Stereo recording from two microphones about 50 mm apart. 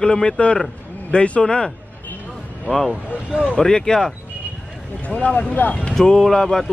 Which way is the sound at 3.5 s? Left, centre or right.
Centre.